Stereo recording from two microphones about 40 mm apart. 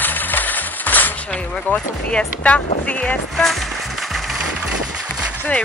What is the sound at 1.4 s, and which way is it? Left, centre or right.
Speech, left.